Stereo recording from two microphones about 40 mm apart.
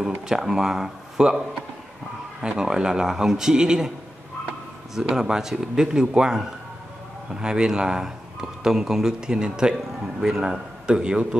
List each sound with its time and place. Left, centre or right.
0.3 s speech: centre
2.4 s speech: centre
5.0 s speech: centre
10.9 s a man's voice: right